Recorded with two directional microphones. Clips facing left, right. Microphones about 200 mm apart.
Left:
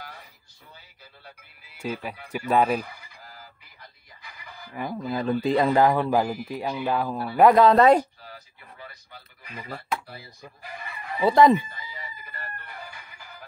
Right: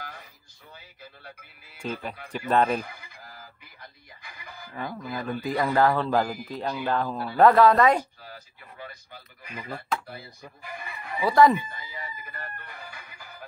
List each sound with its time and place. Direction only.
1.8 s speech: 10° left (ahead or behind)
4.7 s speech: 15° left (ahead or behind)
7.7 s speech: 30° left (ahead or behind)
11.2 s speech: 20° left (ahead or behind)
11.9 s chicken: 50° right (ahead or behind)